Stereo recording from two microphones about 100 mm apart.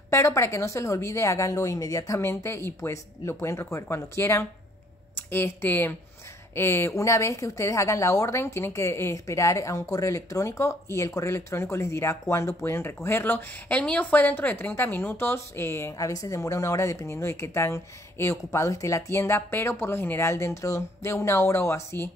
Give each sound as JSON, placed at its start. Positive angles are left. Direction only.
{"t": 0.1, "sound": "speech", "side_deg": 30}